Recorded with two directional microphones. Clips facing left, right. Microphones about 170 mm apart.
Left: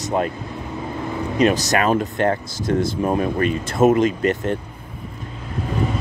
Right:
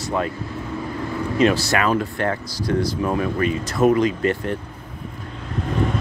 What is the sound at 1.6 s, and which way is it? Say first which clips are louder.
Speech: left 2 dB; 40° left (ahead or behind).